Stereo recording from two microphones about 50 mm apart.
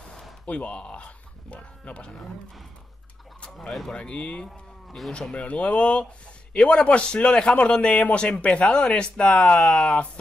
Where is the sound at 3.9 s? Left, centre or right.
Left.